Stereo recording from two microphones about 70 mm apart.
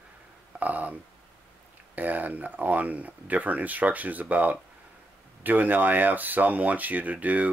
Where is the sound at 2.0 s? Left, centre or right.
Right.